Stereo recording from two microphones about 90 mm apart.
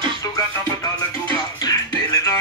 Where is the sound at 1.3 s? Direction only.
40° left (ahead or behind).